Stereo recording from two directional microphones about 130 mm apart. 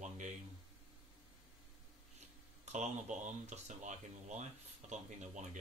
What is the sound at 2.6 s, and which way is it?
Speech, 65° right (ahead or behind).